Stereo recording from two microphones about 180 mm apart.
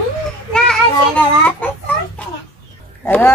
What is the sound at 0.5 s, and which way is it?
Child singing, 5° left (ahead or behind).